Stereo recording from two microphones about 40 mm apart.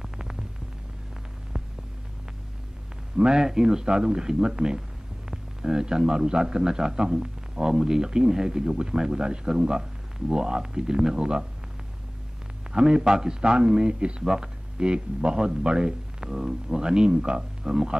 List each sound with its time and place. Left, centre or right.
0.0 s hum: centre
1.5 s hum: centre
3.2 s a man's voice: centre
12.7 s a man's voice: centre